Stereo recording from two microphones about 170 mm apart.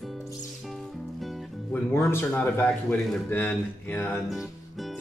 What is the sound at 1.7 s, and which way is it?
A man's voice, 15° left (ahead or behind).